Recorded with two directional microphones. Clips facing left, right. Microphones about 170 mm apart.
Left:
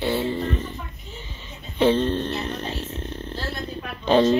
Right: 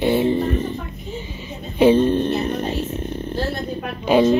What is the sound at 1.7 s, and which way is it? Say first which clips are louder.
Speech: right 5 dB; 10° right (ahead or behind).